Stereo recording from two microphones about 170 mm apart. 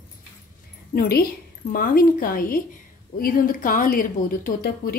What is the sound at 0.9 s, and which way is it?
A woman's voice, 65° left (ahead or behind).